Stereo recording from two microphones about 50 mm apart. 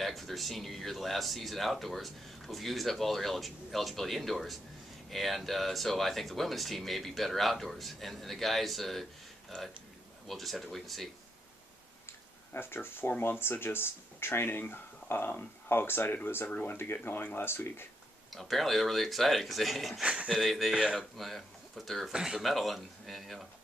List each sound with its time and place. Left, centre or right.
0.0 s speech: centre
10.2 s speech: centre
12.1 s a sound: left
13.2 s speech: left
17.5 s speech: left
18.3 s speech: centre
20.0 s speech: right
20.2 s speech: centre
22.1 s speech: centre
22.4 s speech: centre